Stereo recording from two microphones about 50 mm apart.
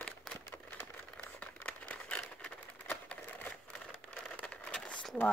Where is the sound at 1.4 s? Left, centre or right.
Left.